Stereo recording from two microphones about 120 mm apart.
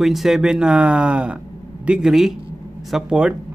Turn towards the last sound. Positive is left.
turn(degrees=-5)  # may be behind; listen again after turning